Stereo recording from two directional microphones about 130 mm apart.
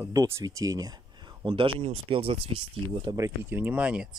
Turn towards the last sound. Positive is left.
turn(degrees=-10)  # may be behind; listen again after turning